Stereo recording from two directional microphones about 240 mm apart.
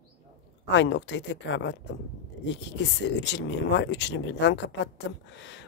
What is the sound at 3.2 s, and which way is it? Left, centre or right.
Speech, left.